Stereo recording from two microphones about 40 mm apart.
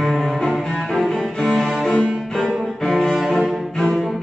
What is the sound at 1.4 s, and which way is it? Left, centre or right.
Cello, centre.